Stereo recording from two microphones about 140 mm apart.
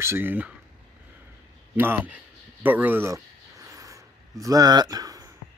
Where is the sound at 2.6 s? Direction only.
10° right (ahead or behind).